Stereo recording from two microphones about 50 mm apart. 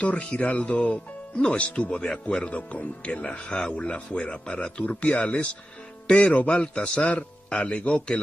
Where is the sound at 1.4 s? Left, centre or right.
Left.